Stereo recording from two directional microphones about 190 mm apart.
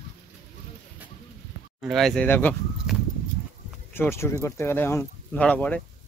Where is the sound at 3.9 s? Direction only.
15° left (ahead or behind).